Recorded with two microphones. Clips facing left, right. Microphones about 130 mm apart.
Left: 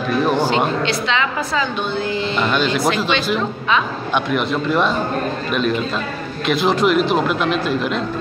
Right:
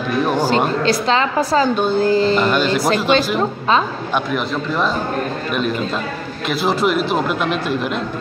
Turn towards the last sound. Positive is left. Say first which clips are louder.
# left 1 dB
turn(degrees=-5)  # may be behind; listen again after turning